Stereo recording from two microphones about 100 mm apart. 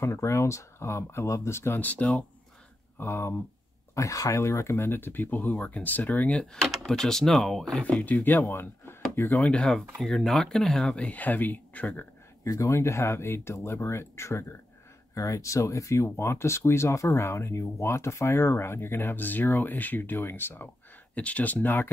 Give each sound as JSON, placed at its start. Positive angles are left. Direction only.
{"t": 0.0, "sound": "speech", "side_deg": 30}
{"t": 3.0, "sound": "speech", "side_deg": 25}
{"t": 6.7, "sound": "speech", "side_deg": 5}
{"t": 12.4, "sound": "speech", "side_deg": 30}